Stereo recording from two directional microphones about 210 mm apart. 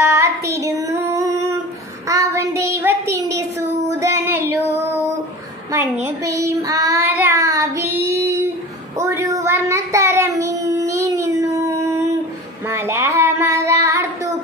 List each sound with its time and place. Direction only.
0.0 s child singing: 15° right (ahead or behind)
6.0 s child singing: 15° right (ahead or behind)